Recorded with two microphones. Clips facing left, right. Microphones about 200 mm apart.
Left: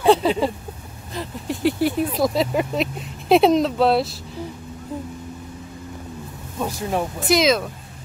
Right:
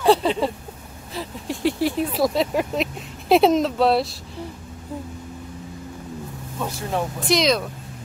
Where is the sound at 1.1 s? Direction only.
Centre (ahead or behind).